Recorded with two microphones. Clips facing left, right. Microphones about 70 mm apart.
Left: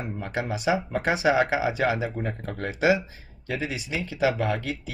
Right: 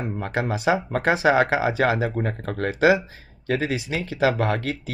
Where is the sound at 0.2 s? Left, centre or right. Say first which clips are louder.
Right 4 dB; right.